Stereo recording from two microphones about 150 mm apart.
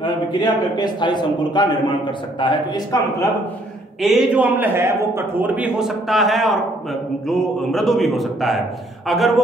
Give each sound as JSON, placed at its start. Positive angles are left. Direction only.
{"t": 0.0, "sound": "a man's voice", "side_deg": 30}
{"t": 4.0, "sound": "a man's voice", "side_deg": 0}